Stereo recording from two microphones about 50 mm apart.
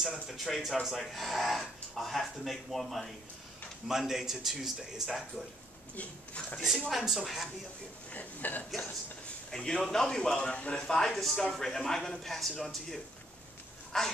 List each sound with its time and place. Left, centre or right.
0.3 s a man's voice: centre
5.9 s speech: left
6.9 s speech: centre
8.1 s speech: left
9.5 s a man's voice: centre
11.1 s a man's voice: centre